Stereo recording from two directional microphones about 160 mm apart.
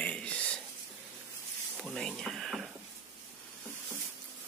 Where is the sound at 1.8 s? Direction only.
Centre (ahead or behind).